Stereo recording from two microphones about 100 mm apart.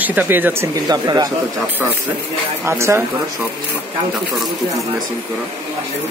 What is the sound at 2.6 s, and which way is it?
Speech, 25° right (ahead or behind).